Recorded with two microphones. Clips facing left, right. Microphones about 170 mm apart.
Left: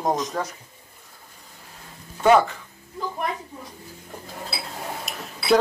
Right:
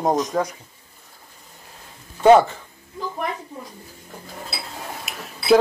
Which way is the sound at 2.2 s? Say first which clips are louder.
Right 4 dB; 25° right (ahead or behind).